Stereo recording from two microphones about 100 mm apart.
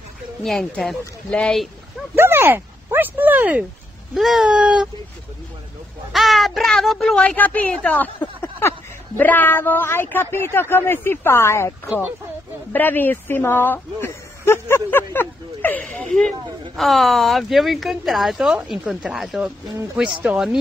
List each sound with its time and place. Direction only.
0.4 s speech: 5° left (ahead or behind)
2.1 s speech: 20° right (ahead or behind)
4.1 s a sound: 5° right (ahead or behind)
6.1 s speech: centre (ahead or behind)
7.2 s speech: 15° left (ahead or behind); by 19.5 s 5° right (ahead or behind)
20.2 s a sound: 5° right (ahead or behind)